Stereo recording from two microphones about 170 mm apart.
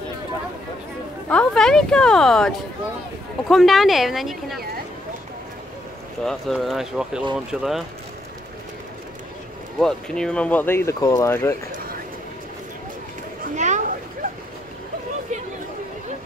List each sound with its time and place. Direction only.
1.3 s a woman's voice: 5° left (ahead or behind)
6.2 s a woman's voice: centre (ahead or behind)
9.8 s speech: 5° left (ahead or behind)
13.4 s a sound: 45° right (ahead or behind)